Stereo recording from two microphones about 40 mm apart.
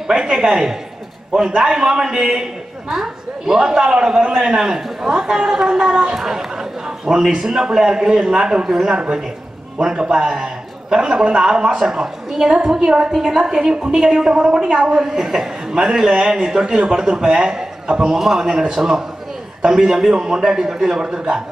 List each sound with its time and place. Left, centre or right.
0.1 s a woman's voice: centre